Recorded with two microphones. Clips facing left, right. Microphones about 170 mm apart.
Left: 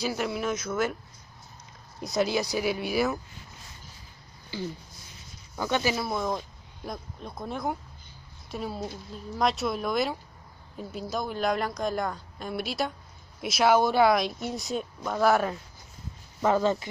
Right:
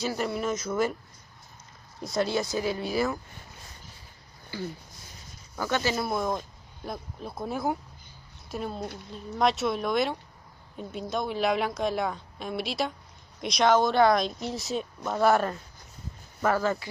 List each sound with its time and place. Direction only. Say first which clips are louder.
0.0 s speech: even; 5° left (ahead or behind)
2.0 s speech: left 1 dB; 15° left (ahead or behind)
5.6 s speech: left 1 dB; 15° left (ahead or behind)
5.9 s a woman's voice: right 1 dB; centre (ahead or behind)
16.3 s speech: left 2 dB; 20° left (ahead or behind)